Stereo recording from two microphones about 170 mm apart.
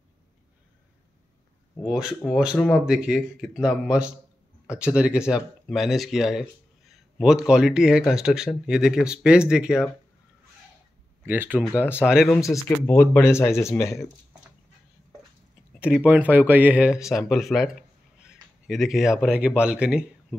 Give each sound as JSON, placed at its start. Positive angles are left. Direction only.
{"t": 1.9, "sound": "speech", "side_deg": -5}
{"t": 11.2, "sound": "speech", "side_deg": -10}
{"t": 12.3, "sound": "speech", "side_deg": 20}
{"t": 15.8, "sound": "speech", "side_deg": -10}